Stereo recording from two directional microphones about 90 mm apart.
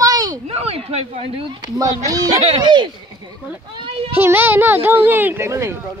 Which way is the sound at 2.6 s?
60° right (ahead or behind).